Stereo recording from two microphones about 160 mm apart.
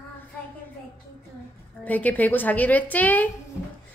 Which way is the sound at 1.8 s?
10° left (ahead or behind).